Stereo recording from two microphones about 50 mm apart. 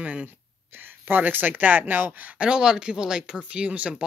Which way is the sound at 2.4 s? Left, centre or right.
Centre.